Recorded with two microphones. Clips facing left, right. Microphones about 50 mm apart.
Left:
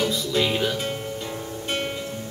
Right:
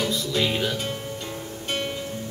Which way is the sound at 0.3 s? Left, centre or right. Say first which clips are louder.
Left 2 dB; centre.